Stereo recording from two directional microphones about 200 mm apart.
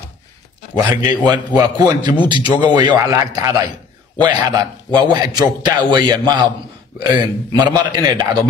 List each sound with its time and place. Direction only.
1.0 s a man's voice: 20° right (ahead or behind)